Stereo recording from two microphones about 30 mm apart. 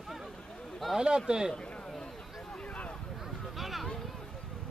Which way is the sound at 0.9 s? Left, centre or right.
Right.